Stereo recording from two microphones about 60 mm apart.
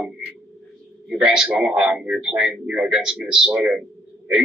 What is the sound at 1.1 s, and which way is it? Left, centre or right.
A man's voice, centre.